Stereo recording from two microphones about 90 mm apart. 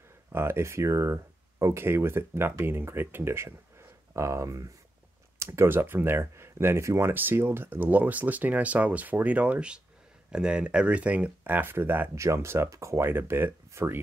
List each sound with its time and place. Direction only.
0.3 s speech: 25° right (ahead or behind)